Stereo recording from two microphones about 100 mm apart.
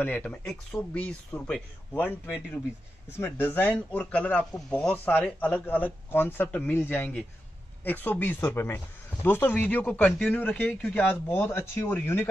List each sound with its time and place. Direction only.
0.0 s a man's voice: 15° left (ahead or behind)
3.1 s a man's voice: 25° left (ahead or behind)